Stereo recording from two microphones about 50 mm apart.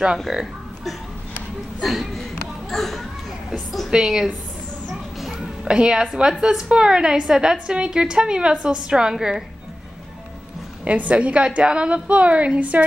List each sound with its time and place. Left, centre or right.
0.3 s a woman's voice: centre
1.8 s speech: centre
2.7 s children playing: centre
3.5 s a woman's voice: centre
3.9 s a woman's voice: centre
5.2 s music: centre
5.8 s a woman's voice: centre
10.8 s a woman's voice: right